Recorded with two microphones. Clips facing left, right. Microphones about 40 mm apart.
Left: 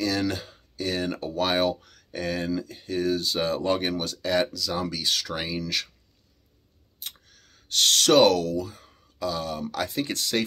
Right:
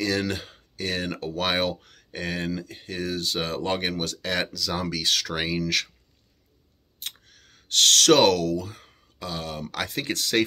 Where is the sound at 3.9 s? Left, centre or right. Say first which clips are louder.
Left 2 dB; right.